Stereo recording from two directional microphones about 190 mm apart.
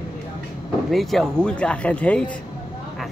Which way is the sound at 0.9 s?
Centre (ahead or behind).